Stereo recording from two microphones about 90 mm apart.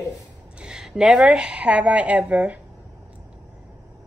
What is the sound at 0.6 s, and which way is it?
Speech, 5° right (ahead or behind).